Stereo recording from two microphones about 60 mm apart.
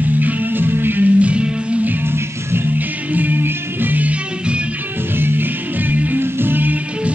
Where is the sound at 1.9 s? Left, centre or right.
Right.